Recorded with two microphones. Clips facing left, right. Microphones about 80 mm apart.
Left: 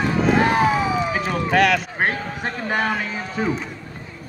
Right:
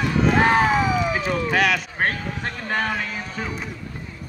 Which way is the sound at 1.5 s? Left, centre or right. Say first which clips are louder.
Left 4 dB; centre.